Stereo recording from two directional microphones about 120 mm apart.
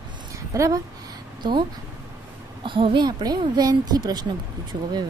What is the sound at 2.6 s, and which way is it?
A woman's voice, 45° right (ahead or behind).